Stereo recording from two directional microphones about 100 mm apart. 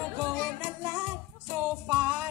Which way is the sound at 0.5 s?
25° right (ahead or behind).